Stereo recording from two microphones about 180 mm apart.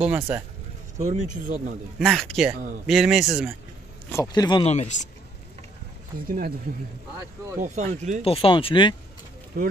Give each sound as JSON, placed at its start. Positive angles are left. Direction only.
{"t": 0.0, "sound": "speech", "side_deg": -10}
{"t": 0.9, "sound": "speech", "side_deg": -40}
{"t": 2.0, "sound": "speech", "side_deg": 0}
{"t": 4.1, "sound": "speech", "side_deg": 20}
{"t": 4.6, "sound": "speech", "side_deg": 40}
{"t": 6.2, "sound": "speech", "side_deg": -55}
{"t": 7.6, "sound": "speech", "side_deg": -40}
{"t": 8.2, "sound": "speech", "side_deg": 30}